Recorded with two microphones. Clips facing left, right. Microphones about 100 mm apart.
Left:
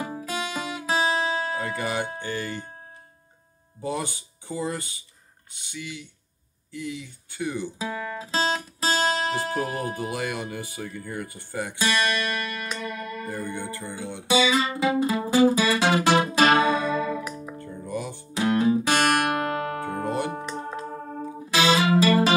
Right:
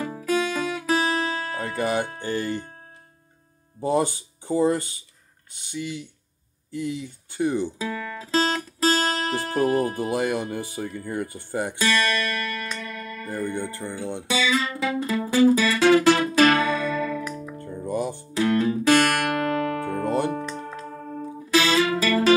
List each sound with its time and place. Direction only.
0.0 s music: 20° left (ahead or behind)
1.8 s speech: 40° right (ahead or behind)
3.8 s speech: 35° right (ahead or behind)
7.8 s guitar: 20° left (ahead or behind)
9.9 s speech: 30° right (ahead or behind)
11.8 s music: 20° left (ahead or behind)
13.5 s speech: 35° right (ahead or behind)
14.2 s music: 20° left (ahead or behind)
17.6 s music: 40° right (ahead or behind)
18.3 s music: 20° left (ahead or behind)